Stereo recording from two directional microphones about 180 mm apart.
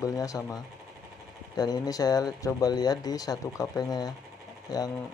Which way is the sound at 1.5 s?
20° left (ahead or behind).